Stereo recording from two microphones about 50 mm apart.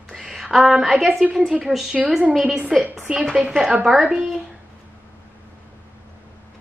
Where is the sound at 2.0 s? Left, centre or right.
Centre.